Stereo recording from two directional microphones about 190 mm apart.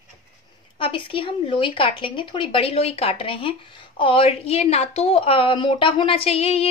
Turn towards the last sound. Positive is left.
turn(degrees=30)  # may be behind; listen again after turning